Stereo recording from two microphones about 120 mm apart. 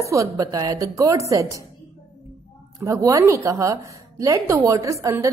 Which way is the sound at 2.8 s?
25° right (ahead or behind).